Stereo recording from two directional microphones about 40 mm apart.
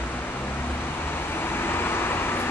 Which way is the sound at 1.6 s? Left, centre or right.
Left.